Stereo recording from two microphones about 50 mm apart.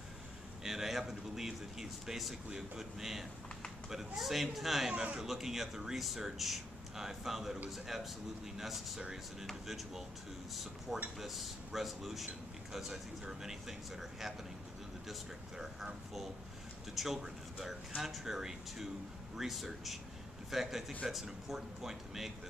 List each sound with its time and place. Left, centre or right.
0.7 s speech: centre
4.9 s speech: centre
5.2 s speech: centre
15.0 s speech: centre